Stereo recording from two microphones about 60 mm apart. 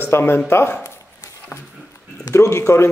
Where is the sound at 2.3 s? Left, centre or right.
Left.